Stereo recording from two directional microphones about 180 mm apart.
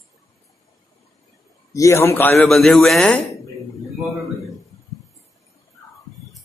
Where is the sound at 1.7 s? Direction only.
15° left (ahead or behind).